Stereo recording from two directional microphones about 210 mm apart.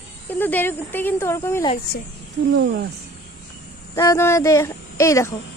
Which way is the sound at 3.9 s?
15° left (ahead or behind).